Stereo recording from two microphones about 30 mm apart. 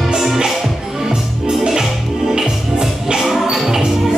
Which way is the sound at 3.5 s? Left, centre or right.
Centre.